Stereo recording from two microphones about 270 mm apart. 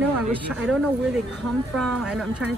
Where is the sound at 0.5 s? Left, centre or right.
Centre.